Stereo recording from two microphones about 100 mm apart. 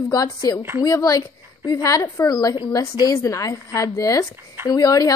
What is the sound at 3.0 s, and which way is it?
A woman's voice, 35° left (ahead or behind).